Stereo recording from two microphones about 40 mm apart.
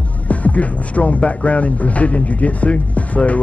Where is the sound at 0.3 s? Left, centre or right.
Left.